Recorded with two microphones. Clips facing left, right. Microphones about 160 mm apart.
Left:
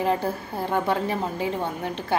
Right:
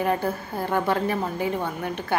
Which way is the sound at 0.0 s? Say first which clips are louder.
Even; 25° left (ahead or behind).